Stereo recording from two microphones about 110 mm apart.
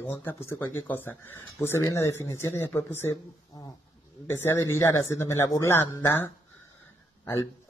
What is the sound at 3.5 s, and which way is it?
Speech, 35° left (ahead or behind).